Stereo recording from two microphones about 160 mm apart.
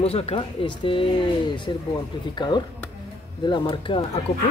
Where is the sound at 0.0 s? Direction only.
40° left (ahead or behind).